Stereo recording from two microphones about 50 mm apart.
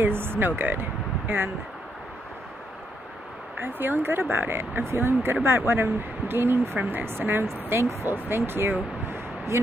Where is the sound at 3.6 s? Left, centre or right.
Right.